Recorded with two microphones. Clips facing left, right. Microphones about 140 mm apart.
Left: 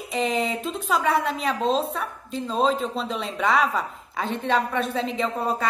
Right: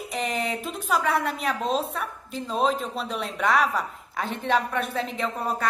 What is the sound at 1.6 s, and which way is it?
Speech, 25° left (ahead or behind).